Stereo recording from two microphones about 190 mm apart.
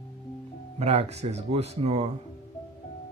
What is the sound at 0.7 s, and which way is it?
Speech, 35° right (ahead or behind).